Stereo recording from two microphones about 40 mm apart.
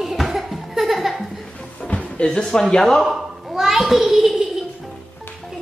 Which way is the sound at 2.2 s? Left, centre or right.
Left.